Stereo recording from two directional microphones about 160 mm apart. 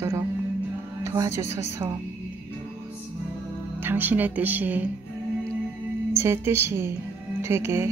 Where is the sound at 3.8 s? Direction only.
10° right (ahead or behind).